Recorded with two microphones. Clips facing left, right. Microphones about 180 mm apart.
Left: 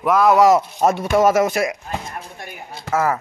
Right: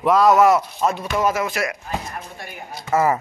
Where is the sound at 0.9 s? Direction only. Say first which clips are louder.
Left 6 dB; 50° left (ahead or behind).